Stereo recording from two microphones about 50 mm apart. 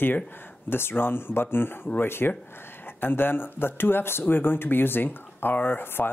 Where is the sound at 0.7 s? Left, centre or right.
Left.